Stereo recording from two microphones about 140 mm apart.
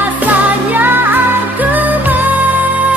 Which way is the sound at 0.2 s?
10° right (ahead or behind).